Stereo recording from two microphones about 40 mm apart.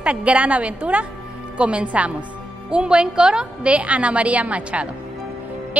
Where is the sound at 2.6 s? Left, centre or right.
Right.